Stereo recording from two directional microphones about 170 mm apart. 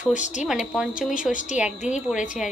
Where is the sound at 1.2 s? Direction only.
50° left (ahead or behind).